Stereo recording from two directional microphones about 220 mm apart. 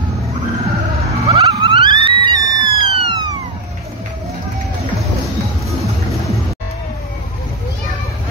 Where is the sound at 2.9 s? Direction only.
20° right (ahead or behind).